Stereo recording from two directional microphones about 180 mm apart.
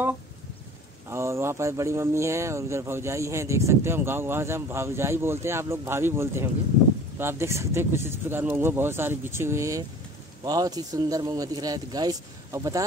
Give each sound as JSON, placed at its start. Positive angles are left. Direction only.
{"t": 1.1, "sound": "speech", "side_deg": -15}